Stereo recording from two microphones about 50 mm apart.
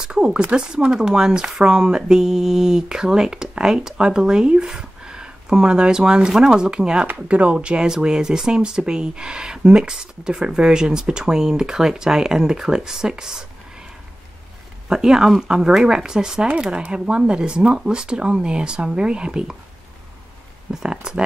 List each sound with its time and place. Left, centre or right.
0.0 s a sound: centre
0.6 s speech: centre
14.9 s speech: centre
20.7 s speech: centre